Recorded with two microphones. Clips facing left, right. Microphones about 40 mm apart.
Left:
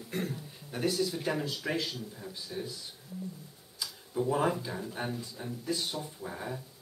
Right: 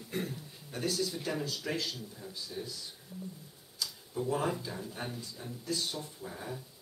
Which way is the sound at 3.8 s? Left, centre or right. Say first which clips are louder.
Left 3 dB; centre.